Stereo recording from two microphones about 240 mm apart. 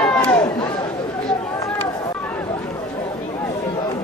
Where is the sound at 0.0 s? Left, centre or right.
Centre.